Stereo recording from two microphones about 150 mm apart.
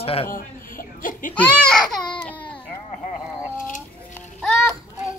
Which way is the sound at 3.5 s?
60° left (ahead or behind).